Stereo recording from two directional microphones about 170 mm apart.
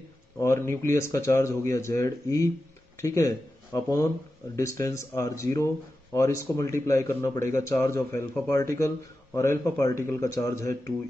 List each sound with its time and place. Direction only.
0.4 s speech: 15° left (ahead or behind)